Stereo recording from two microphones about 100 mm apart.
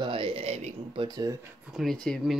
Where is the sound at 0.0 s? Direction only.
65° right (ahead or behind); by 1.0 s 85° right.